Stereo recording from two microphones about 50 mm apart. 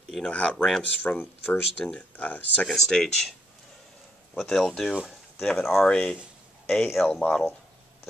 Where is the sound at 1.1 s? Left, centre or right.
Left.